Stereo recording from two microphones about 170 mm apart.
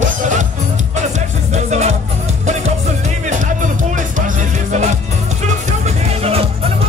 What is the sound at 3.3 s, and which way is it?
Music, 50° right (ahead or behind).